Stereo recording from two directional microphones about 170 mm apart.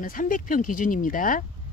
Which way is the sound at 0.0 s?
50° left (ahead or behind).